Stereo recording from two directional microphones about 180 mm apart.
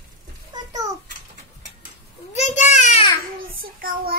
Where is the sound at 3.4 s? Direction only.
55° right (ahead or behind).